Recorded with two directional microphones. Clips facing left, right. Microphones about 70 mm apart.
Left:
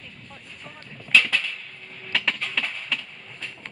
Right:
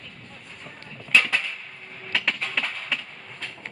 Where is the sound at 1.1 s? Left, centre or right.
Right.